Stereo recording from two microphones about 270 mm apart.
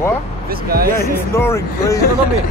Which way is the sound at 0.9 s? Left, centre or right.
Centre.